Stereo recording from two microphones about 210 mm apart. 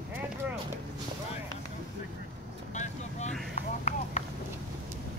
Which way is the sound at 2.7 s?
35° left (ahead or behind).